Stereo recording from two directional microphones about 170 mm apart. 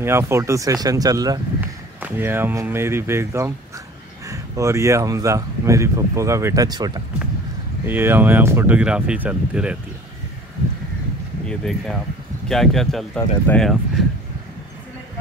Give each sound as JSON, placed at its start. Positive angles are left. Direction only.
{"t": 0.0, "sound": "speech", "side_deg": -15}
{"t": 7.8, "sound": "speech", "side_deg": -15}
{"t": 11.4, "sound": "speech", "side_deg": 5}